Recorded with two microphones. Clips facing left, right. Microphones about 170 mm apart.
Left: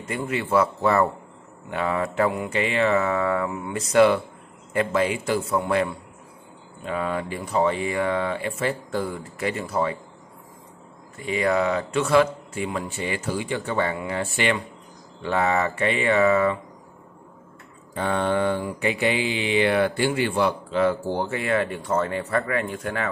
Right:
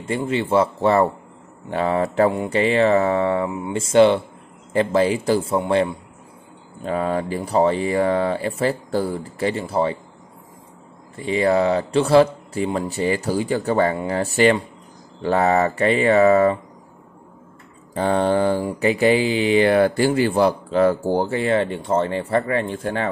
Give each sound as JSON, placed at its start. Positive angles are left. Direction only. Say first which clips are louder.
{"t": 0.0, "sound": "a man's voice", "louder": "right 5 dB", "side_deg": -30}
{"t": 1.7, "sound": "mantra", "louder": "right 5 dB", "side_deg": -30}
{"t": 6.8, "sound": "mantra", "louder": "right 5 dB", "side_deg": -35}
{"t": 11.1, "sound": "mantra", "louder": "right 4 dB", "side_deg": -30}
{"t": 17.9, "sound": "mantra", "louder": "right 5 dB", "side_deg": -35}